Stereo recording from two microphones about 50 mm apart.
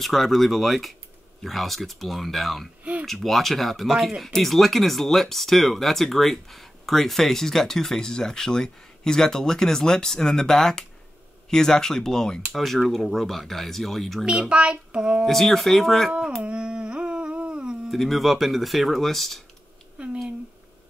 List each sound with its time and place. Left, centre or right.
0.0 s speech: centre
2.8 s a sound: right
3.1 s speech: centre
14.5 s child singing: right
15.2 s speech: centre
16.4 s humming: right
17.8 s speech: centre
20.0 s child singing: right